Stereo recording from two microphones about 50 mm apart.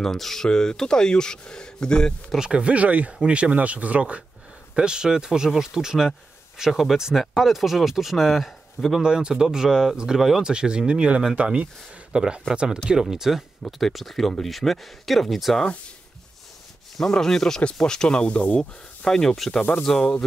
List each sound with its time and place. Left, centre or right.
0.0 s speech: centre
2.3 s speech: centre
4.7 s speech: centre
9.0 s speech: centre
16.9 s speech: centre
18.3 s speech: left
18.6 s speech: centre